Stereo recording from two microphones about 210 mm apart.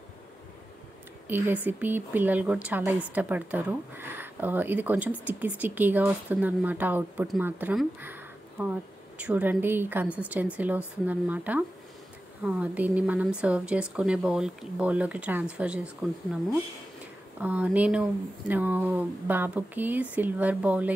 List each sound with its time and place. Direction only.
1.2 s speech: 10° right (ahead or behind)
17.4 s speech: 5° right (ahead or behind)